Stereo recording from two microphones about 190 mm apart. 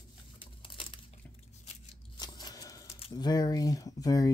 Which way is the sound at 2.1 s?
20° left (ahead or behind).